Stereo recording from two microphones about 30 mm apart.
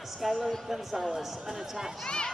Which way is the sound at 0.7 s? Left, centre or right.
Centre.